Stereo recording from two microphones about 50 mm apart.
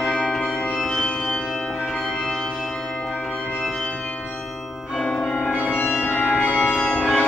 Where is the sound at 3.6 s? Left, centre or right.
Centre.